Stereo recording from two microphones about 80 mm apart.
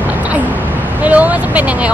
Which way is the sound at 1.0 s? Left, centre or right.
Centre.